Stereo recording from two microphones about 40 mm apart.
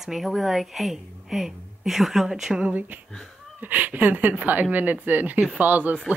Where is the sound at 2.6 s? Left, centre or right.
Right.